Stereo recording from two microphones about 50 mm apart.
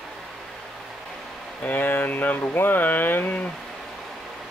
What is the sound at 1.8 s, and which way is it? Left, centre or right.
Speech, left.